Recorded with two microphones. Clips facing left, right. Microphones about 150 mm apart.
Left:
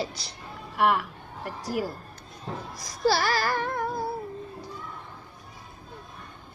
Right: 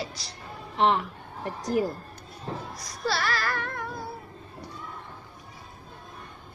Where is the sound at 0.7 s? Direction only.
25° right (ahead or behind).